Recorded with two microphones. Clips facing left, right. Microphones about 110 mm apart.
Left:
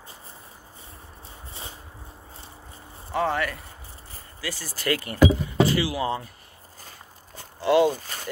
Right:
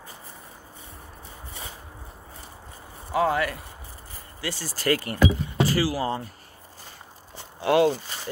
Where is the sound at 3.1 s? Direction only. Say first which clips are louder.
Right 2 dB; 5° right (ahead or behind).